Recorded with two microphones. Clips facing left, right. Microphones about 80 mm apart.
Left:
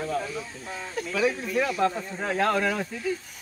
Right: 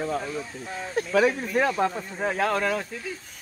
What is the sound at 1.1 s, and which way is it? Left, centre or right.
Speech, right.